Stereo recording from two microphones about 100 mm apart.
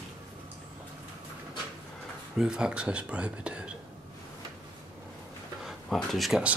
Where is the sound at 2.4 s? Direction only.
5° right (ahead or behind).